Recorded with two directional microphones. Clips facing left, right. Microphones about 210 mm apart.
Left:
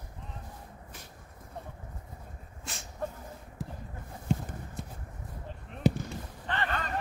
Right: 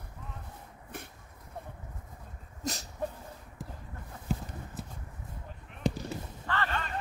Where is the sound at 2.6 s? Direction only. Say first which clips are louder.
Right 9 dB; 40° right (ahead or behind).